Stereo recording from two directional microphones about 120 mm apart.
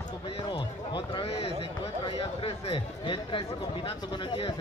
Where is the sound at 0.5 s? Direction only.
45° left (ahead or behind).